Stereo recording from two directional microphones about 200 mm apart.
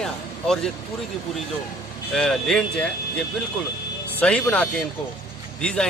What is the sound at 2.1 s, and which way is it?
Speech, centre (ahead or behind).